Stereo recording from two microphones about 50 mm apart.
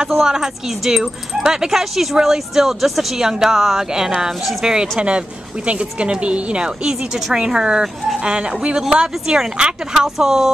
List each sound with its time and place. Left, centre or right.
0.0 s speech: centre
5.7 s a woman's voice: right
8.8 s speech: centre